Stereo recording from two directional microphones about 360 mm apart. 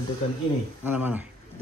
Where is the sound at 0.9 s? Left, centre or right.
Centre.